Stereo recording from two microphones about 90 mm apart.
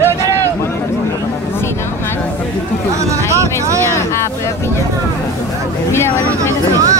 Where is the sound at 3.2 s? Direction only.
35° right (ahead or behind).